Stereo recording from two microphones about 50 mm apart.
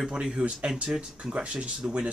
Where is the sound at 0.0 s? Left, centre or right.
Centre.